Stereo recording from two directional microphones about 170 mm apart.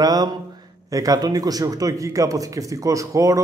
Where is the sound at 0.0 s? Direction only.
20° right (ahead or behind).